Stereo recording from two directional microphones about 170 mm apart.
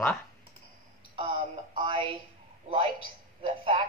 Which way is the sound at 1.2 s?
30° right (ahead or behind).